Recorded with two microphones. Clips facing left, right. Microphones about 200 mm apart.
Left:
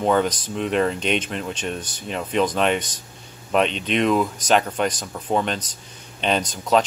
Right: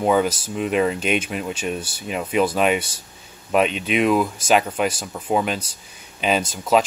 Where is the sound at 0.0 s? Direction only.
5° right (ahead or behind).